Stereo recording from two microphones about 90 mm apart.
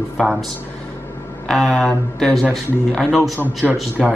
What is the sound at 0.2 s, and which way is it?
Speech, centre (ahead or behind).